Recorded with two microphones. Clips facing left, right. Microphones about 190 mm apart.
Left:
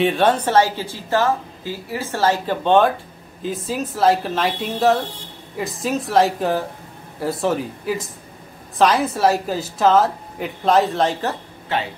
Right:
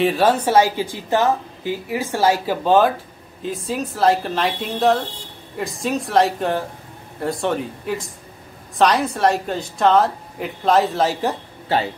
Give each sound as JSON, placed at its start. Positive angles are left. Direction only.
{"t": 0.0, "sound": "a woman's voice", "side_deg": -5}
{"t": 11.7, "sound": "a man's voice", "side_deg": -35}